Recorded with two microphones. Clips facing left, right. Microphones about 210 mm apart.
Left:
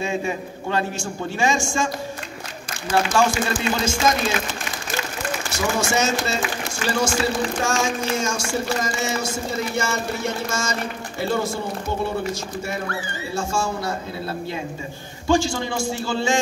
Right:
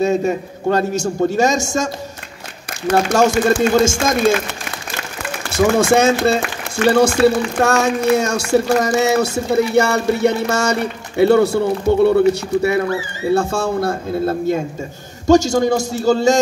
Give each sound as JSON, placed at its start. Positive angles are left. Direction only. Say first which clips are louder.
{"t": 0.0, "sound": "a man's voice", "louder": "right 8 dB", "side_deg": -40}
{"t": 2.9, "sound": "a man's voice", "louder": "right 6 dB", "side_deg": -45}
{"t": 5.8, "sound": "a man's voice", "louder": "right 7 dB", "side_deg": -55}